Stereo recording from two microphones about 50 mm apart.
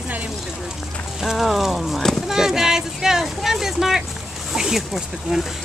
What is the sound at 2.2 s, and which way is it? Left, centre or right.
Speech, centre.